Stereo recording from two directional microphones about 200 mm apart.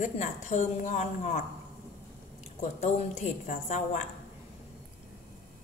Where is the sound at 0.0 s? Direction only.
35° left (ahead or behind).